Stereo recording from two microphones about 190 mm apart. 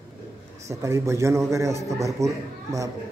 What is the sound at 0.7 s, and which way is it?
A man's voice, 15° right (ahead or behind).